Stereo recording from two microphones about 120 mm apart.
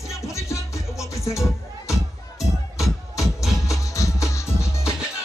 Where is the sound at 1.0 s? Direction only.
25° left (ahead or behind).